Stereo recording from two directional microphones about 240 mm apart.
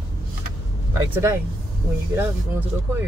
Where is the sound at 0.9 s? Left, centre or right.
Centre.